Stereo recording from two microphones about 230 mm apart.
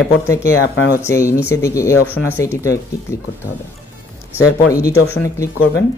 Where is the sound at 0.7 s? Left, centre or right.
Left.